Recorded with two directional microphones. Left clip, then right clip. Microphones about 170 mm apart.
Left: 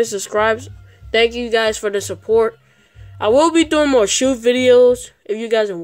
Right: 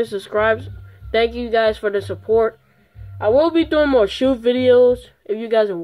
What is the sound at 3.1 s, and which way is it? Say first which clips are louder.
Speech: left 2 dB; 35° left (ahead or behind).